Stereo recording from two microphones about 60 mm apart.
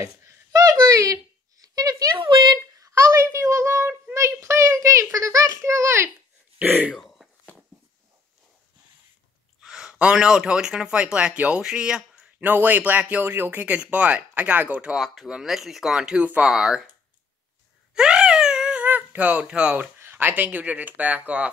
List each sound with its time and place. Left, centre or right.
0.0 s a sound: right
2.7 s a sound: right
3.1 s child singing: right
6.6 s speech: right
7.0 s a sound: centre
9.6 s a sound: centre
9.9 s speech: centre
12.4 s speech: right
15.0 s speech: centre
15.2 s speech: centre
17.9 s wail: centre
18.9 s speech: right
20.0 s speech: right